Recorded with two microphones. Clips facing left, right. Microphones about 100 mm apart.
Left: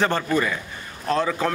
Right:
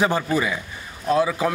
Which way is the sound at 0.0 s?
10° right (ahead or behind).